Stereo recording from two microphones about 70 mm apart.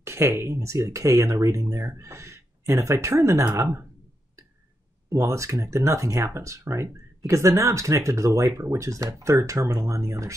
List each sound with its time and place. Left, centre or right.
0.0 s speech: right
5.1 s speech: right